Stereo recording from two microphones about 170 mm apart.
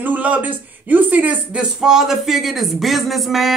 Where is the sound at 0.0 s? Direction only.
10° right (ahead or behind).